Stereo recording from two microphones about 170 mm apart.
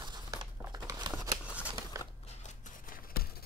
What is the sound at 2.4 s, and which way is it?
Scissors, 45° left (ahead or behind).